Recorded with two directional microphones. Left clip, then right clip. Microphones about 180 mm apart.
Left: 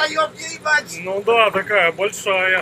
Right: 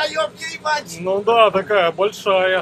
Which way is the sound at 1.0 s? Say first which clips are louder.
Right 4 dB; 20° right (ahead or behind).